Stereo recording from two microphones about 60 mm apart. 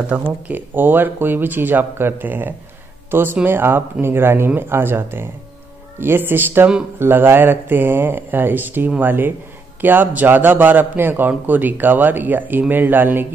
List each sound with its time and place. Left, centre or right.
0.1 s a man's voice: right